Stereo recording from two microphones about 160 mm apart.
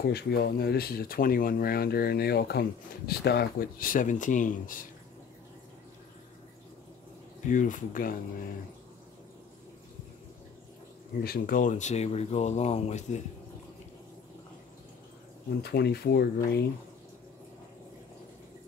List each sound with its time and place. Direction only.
0.0 s speech: 85° left; by 4.8 s 55° left (ahead or behind)
7.4 s speech: 55° left (ahead or behind)
11.2 s speech: 70° left (ahead or behind); by 13.2 s 45° left (ahead or behind)
15.6 s speech: 80° left